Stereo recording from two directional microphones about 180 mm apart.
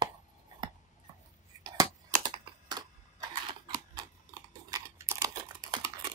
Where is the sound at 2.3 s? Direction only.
25° right (ahead or behind).